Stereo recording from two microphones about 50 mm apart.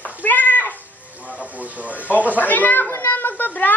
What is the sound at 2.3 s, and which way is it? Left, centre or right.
Speech, left.